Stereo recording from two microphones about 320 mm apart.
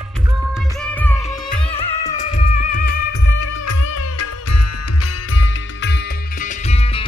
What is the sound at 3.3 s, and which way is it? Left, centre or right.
Music, left.